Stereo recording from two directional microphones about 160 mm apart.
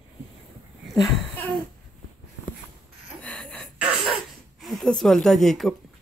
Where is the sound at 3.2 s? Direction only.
5° left (ahead or behind).